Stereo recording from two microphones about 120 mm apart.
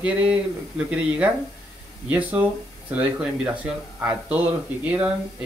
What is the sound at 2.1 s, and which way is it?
Speech, 15° right (ahead or behind).